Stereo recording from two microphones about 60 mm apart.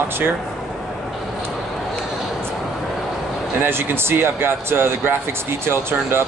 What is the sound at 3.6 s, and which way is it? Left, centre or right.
Speech, right.